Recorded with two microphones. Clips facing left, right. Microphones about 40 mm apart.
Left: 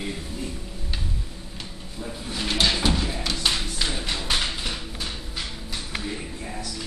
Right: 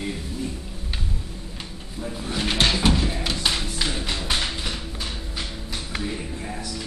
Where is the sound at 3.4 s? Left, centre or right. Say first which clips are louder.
Left 1 dB; centre.